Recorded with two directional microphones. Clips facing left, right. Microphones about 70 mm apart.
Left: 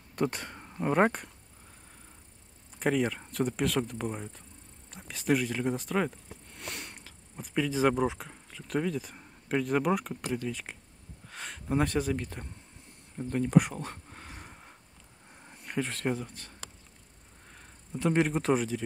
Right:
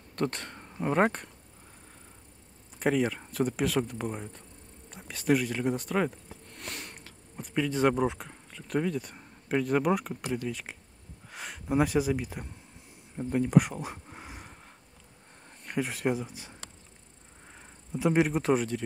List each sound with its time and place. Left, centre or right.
0.1 s speech: centre
2.8 s speech: centre
13.1 s a sound: centre
15.4 s speech: centre
17.6 s speech: centre